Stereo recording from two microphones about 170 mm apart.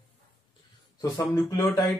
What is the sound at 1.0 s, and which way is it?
Speech, 20° left (ahead or behind).